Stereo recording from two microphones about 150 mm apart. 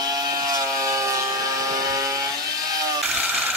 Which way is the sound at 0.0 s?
25° right (ahead or behind).